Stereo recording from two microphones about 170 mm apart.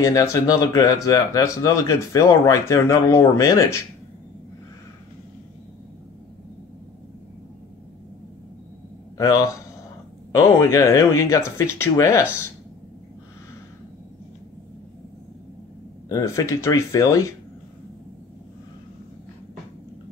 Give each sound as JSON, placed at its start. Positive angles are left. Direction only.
{"t": 0.0, "sound": "speech", "side_deg": 20}
{"t": 10.3, "sound": "speech", "side_deg": 20}
{"t": 16.1, "sound": "speech", "side_deg": 20}